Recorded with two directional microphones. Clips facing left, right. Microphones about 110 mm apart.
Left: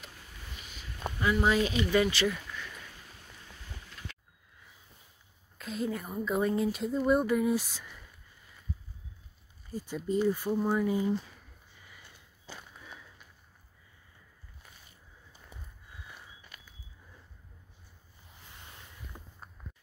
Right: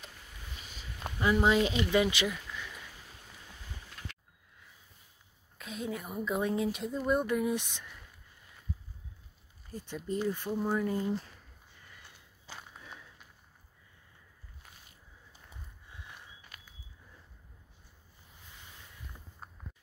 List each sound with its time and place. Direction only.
1.2 s speech: 25° right (ahead or behind); by 2.9 s 10° right (ahead or behind)
5.6 s a woman's voice: centre (ahead or behind)
9.7 s speech: 10° left (ahead or behind)
19.1 s a sound: 35° left (ahead or behind)